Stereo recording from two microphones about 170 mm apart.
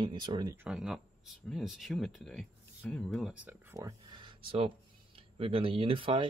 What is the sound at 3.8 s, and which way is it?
Speech, 25° right (ahead or behind).